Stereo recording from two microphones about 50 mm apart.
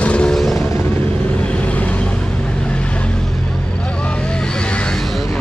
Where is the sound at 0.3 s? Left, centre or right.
Centre.